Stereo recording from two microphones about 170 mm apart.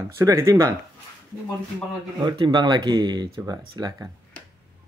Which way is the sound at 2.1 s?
25° right (ahead or behind).